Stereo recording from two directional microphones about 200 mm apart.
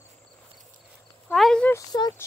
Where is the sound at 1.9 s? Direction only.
20° left (ahead or behind).